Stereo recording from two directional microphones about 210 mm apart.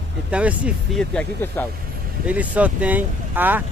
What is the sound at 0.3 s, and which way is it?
Speech, 5° right (ahead or behind).